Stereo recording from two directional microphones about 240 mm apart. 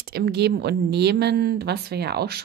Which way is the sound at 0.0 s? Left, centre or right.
Right.